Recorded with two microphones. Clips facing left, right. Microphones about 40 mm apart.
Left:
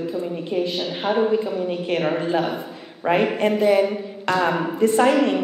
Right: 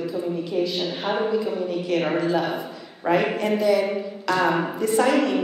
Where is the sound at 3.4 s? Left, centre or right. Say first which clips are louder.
Left 3 dB; left.